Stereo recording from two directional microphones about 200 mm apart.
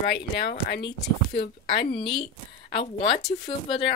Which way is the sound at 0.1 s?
60° left (ahead or behind).